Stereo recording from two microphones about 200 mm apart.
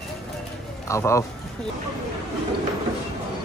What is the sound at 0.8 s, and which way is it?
Speech, 15° left (ahead or behind).